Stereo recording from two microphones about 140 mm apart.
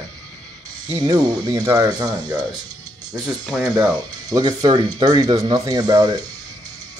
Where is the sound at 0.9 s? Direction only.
25° right (ahead or behind).